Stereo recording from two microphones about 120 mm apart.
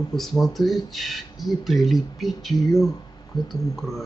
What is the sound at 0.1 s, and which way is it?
Speech, centre (ahead or behind).